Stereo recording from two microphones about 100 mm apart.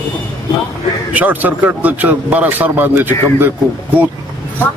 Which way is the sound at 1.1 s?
15° right (ahead or behind).